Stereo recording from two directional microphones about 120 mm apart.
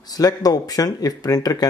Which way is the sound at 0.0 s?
30° left (ahead or behind).